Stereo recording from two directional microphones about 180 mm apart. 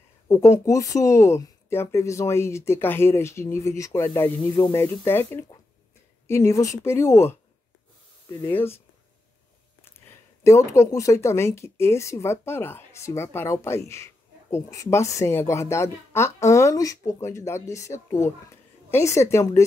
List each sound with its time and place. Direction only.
0.3 s a woman's voice: 15° left (ahead or behind)
8.4 s speech: 10° left (ahead or behind)
9.8 s speech: 15° left (ahead or behind)